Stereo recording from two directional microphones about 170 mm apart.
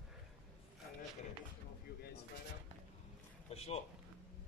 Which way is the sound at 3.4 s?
40° left (ahead or behind).